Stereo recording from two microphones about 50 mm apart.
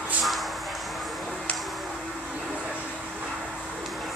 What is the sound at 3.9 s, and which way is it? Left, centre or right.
Music, centre.